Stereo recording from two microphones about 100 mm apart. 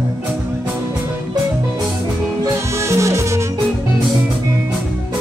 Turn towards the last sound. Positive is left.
turn(degrees=-30)  # may be behind; listen again after turning